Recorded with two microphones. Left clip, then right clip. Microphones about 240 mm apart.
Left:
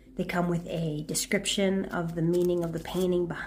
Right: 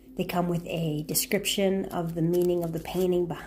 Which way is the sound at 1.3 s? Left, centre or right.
Centre.